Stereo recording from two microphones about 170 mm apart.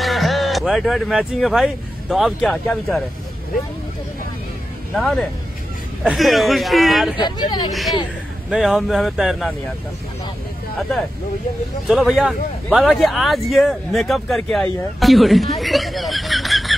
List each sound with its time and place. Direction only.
0.0 s speech: centre (ahead or behind)
4.9 s speech: centre (ahead or behind)
7.2 s speech: 25° left (ahead or behind)
8.5 s speech: centre (ahead or behind)
11.9 s speech: centre (ahead or behind)